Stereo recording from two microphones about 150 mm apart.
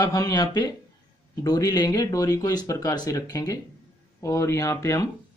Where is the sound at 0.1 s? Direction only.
25° left (ahead or behind).